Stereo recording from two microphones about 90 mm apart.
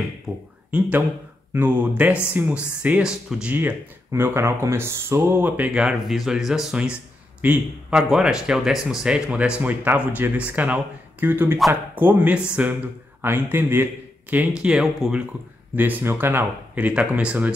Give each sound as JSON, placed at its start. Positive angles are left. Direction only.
{"t": 0.7, "sound": "speech", "side_deg": -15}
{"t": 4.1, "sound": "speech", "side_deg": -30}
{"t": 5.8, "sound": "speech", "side_deg": -5}
{"t": 7.4, "sound": "speech", "side_deg": -20}
{"t": 7.9, "sound": "speech", "side_deg": -5}
{"t": 14.3, "sound": "speech", "side_deg": -15}
{"t": 15.7, "sound": "speech", "side_deg": -20}